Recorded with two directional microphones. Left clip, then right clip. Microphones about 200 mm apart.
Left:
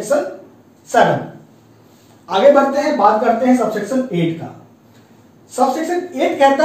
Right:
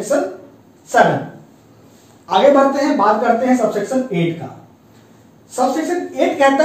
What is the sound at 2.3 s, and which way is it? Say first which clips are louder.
Speech: right 2 dB; 15° right (ahead or behind).